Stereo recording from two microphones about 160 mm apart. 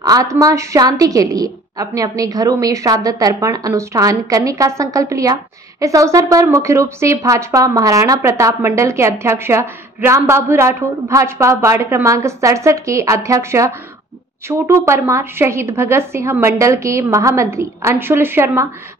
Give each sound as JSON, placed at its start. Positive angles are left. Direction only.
{"t": 0.0, "sound": "a woman's voice", "side_deg": -20}